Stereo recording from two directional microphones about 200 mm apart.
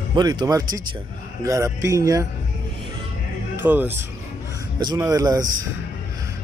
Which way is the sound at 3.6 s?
10° right (ahead or behind).